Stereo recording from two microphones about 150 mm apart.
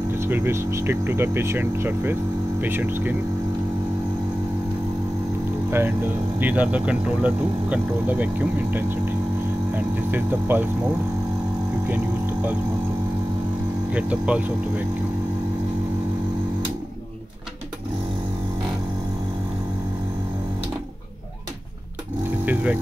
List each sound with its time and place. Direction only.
0.1 s speech: 15° right (ahead or behind)
5.7 s speech: 15° right (ahead or behind)
11.9 s speech: 10° right (ahead or behind)
13.9 s speech: 10° right (ahead or behind)
22.4 s vehicle: 10° right (ahead or behind)